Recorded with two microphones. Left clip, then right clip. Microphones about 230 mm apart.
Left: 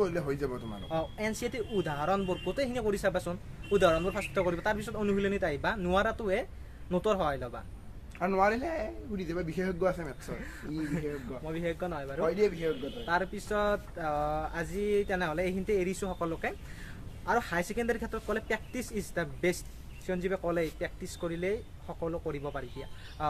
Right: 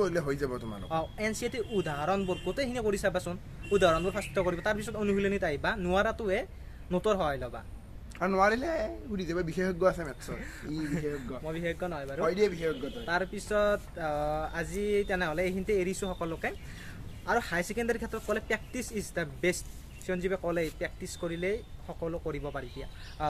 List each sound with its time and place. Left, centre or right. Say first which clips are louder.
0.0 s speech: right 1 dB; right
0.8 s speech: right 1 dB; centre
8.2 s speech: right 1 dB; right
10.8 s speech: right 1 dB; centre
12.2 s speech: right 1 dB; right
13.0 s speech: left 1 dB; centre